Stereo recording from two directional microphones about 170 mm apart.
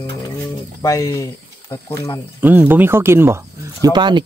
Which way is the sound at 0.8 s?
20° left (ahead or behind).